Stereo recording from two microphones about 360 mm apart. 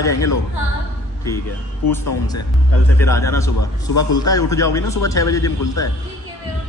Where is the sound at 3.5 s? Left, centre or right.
Left.